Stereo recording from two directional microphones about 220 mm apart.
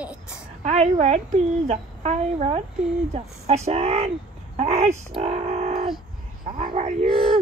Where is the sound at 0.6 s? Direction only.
30° right (ahead or behind).